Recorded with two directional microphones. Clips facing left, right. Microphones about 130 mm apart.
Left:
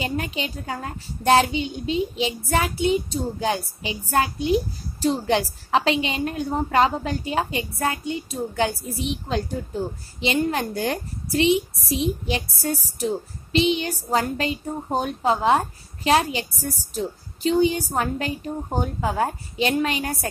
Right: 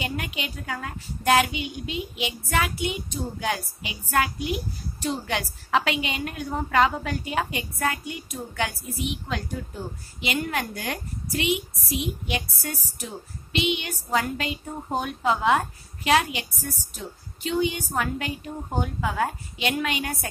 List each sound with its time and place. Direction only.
0.0 s a woman's voice: 30° left (ahead or behind)